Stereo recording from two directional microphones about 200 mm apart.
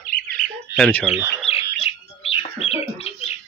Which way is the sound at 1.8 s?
30° left (ahead or behind).